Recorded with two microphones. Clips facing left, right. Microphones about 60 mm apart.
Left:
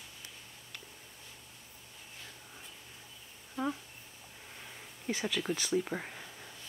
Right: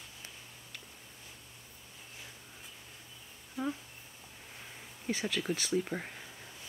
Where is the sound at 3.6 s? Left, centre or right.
Centre.